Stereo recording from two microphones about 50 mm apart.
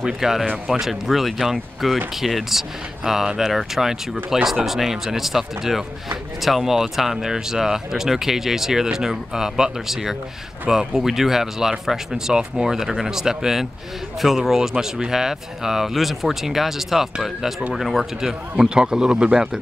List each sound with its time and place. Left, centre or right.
0.0 s speech: centre
18.7 s speech: centre